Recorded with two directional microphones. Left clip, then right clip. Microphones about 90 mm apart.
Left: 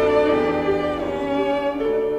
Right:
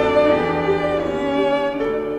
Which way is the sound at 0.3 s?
Centre (ahead or behind).